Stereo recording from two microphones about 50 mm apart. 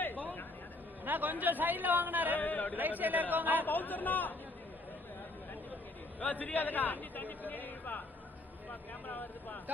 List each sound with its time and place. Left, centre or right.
0.0 s a sound: left
1.0 s speech: right
2.3 s a man's voice: left
2.7 s speech: right
3.6 s a man's voice: left
6.1 s a man's voice: left
9.0 s a man's voice: left